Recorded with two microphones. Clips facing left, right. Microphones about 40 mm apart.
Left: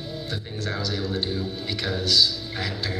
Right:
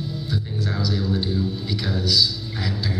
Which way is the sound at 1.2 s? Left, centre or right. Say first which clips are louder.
Right 3 dB; left.